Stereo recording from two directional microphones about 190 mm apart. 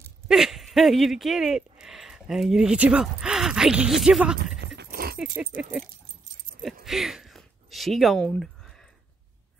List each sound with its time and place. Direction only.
0.3 s speech: centre (ahead or behind)
4.7 s dog: 55° right (ahead or behind)
5.1 s speech: 5° right (ahead or behind)
6.6 s a sound: centre (ahead or behind)